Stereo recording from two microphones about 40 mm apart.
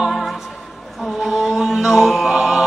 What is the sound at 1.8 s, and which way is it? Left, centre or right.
Music, centre.